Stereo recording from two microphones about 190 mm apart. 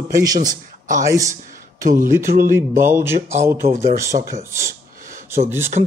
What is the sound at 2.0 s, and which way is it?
Speech, 50° right (ahead or behind).